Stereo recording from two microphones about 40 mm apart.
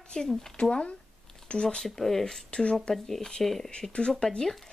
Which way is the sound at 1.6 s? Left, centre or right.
Centre.